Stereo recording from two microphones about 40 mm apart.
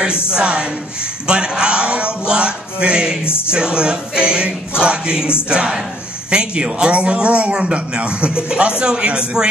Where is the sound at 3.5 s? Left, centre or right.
Right.